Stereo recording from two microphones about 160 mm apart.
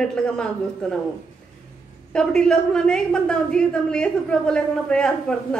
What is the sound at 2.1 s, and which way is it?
A woman's voice, 5° left (ahead or behind).